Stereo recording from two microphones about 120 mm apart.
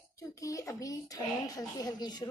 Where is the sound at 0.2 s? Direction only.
25° left (ahead or behind).